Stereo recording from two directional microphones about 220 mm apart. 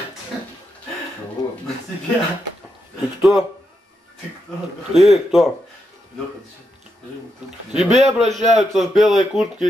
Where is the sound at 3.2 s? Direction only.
Centre (ahead or behind).